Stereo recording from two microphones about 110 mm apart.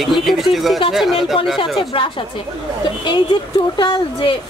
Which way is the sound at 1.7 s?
50° left (ahead or behind).